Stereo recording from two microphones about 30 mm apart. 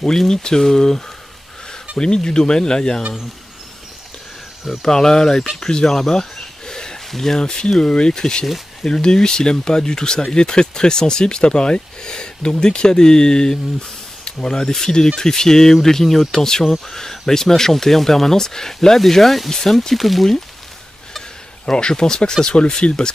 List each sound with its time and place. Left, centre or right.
0.3 s speech: left
4.8 s speech: centre
5.6 s a sound: left
7.1 s speech: centre
7.3 s speech: left; by 20.2 s centre
21.6 s speech: left
22.8 s speech: left